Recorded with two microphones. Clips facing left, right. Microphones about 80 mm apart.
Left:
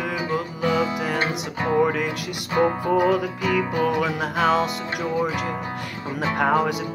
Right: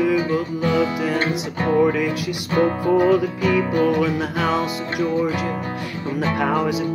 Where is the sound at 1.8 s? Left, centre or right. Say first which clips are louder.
Right 4 dB; left.